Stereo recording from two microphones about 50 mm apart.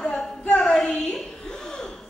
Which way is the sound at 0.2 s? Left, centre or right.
Left.